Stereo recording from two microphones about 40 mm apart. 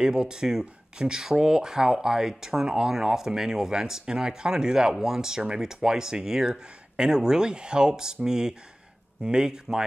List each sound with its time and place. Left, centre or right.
0.0 s speech: centre